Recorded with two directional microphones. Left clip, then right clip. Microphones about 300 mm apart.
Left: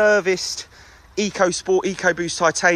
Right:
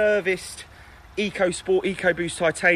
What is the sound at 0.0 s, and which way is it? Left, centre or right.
Speech, centre.